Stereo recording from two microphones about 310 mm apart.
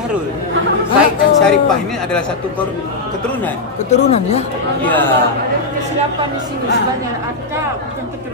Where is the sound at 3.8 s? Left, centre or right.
Left.